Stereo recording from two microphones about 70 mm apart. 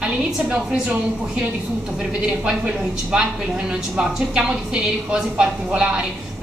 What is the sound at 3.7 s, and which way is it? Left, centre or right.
A woman's voice, centre.